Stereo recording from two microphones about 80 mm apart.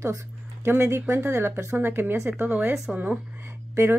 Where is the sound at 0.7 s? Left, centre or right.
Right.